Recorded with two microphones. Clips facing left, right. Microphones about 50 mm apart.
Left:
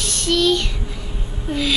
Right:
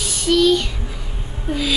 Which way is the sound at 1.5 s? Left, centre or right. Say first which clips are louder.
Even; centre.